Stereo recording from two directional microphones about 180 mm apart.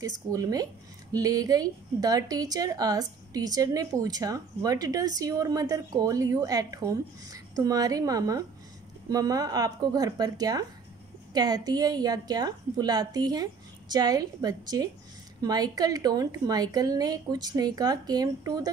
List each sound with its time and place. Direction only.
0.0 s speech: 20° right (ahead or behind)